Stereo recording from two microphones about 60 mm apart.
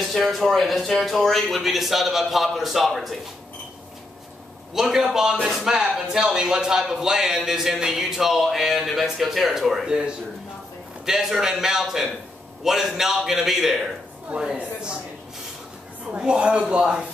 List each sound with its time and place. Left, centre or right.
0.1 s speech: centre
4.7 s speech: centre
16.1 s speech: centre